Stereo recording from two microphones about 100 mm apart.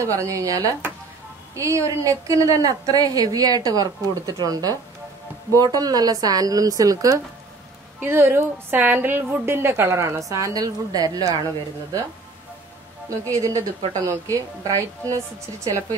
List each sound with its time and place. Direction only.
0.0 s a woman's voice: 30° right (ahead or behind)
8.0 s a woman's voice: 25° right (ahead or behind); by 11.4 s 40° right (ahead or behind)
13.2 s a woman's voice: 35° right (ahead or behind)